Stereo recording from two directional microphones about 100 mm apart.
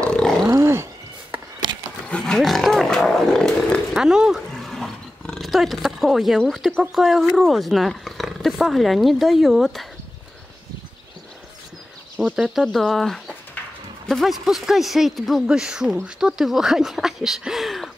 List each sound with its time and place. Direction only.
0.0 s roaring cats: 5° left (ahead or behind)
0.5 s a sound: 30° right (ahead or behind)
2.0 s roaring cats: 10° left (ahead or behind)
3.9 s dog: 5° right (ahead or behind)
6.8 s speech: 5° right (ahead or behind)
12.2 s speech: centre (ahead or behind)